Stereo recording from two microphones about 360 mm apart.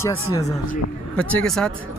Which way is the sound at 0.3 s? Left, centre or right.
Centre.